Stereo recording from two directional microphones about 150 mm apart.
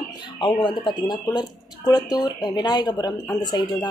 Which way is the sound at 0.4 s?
30° left (ahead or behind).